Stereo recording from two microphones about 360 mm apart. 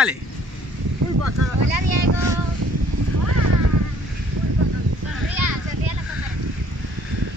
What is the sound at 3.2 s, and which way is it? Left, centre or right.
Vehicle, right.